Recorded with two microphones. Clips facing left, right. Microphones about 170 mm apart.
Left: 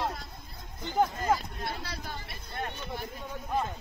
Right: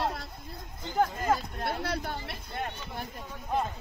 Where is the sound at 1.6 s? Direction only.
60° right (ahead or behind).